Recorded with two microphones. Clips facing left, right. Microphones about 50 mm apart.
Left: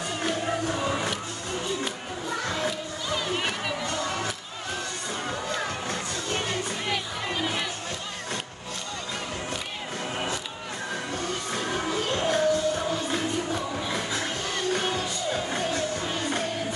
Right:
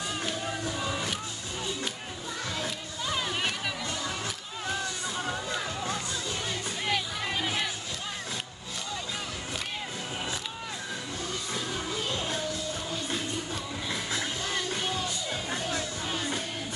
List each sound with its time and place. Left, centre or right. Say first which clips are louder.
0.2 s music: left 5 dB; left
2.4 s children playing: left 5 dB; left
3.3 s music: left 2 dB; centre
3.8 s crowd: left 5 dB; left
5.5 s music: left 2 dB; left
6.9 s a sound: right 3 dB; centre
11.2 s music: left 3 dB; left
14.7 s music: left 5 dB; left